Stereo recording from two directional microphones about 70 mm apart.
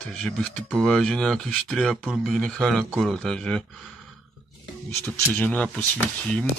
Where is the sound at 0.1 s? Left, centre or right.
Centre.